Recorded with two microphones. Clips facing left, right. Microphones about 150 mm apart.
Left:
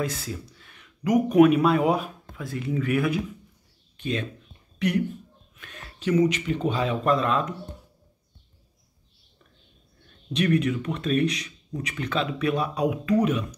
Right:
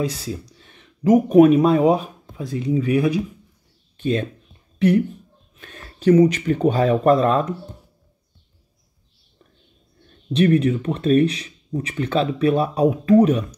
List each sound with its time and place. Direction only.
0.6 s speech: 25° right (ahead or behind)
2.3 s speech: 20° right (ahead or behind)
3.9 s speech: 35° right (ahead or behind)
10.3 s speech: 30° right (ahead or behind)